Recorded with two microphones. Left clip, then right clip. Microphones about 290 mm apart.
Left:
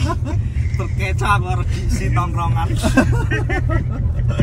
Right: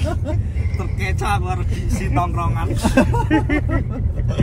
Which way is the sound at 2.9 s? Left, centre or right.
Right.